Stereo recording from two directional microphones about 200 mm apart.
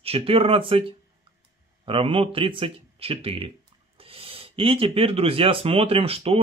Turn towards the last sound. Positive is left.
turn(degrees=-30)  # may be behind; listen again after turning